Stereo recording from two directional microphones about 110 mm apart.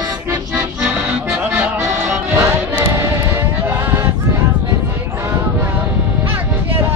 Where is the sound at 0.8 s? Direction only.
10° right (ahead or behind).